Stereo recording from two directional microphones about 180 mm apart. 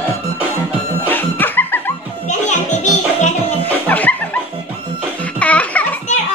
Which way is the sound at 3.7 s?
10° left (ahead or behind).